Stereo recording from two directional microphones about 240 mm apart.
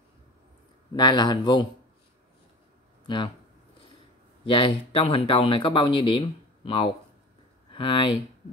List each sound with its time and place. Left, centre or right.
0.9 s a man's voice: centre
4.5 s speech: left